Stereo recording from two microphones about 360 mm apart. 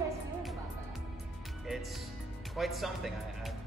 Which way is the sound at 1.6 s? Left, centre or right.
Centre.